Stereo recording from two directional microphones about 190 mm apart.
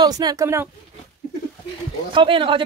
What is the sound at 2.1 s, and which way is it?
Speech, 25° right (ahead or behind).